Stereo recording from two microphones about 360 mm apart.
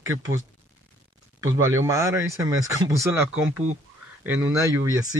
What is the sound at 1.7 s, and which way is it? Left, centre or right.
Speech, centre.